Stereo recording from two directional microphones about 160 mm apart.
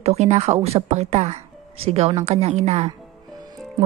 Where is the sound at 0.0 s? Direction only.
40° right (ahead or behind).